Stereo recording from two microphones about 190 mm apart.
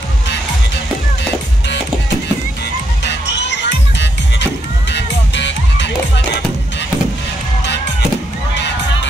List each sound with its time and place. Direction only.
3.1 s music: 65° left (ahead or behind)